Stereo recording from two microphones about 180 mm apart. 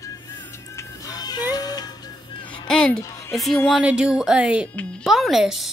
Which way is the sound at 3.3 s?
Centre (ahead or behind).